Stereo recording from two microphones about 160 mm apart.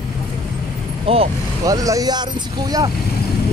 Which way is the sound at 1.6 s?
20° right (ahead or behind).